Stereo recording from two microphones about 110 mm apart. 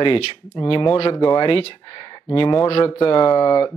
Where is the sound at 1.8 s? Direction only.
40° left (ahead or behind).